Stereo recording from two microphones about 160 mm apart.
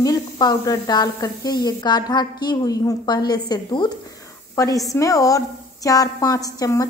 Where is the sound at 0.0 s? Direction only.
25° left (ahead or behind).